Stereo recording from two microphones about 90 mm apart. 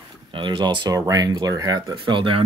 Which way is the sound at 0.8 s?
45° right (ahead or behind).